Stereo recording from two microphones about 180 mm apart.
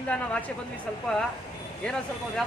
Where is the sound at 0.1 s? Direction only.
5° left (ahead or behind).